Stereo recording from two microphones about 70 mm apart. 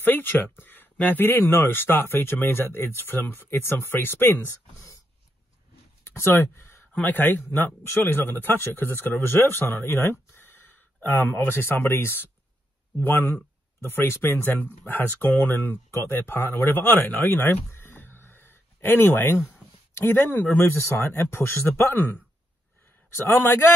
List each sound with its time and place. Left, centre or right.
0.0 s speech: left
6.0 s speech: left
6.9 s a man's voice: left